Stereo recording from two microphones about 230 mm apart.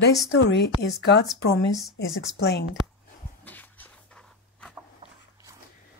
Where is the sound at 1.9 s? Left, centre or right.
Left.